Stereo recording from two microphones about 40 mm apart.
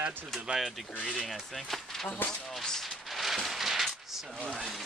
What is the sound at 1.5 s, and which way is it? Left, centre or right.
Speech, centre.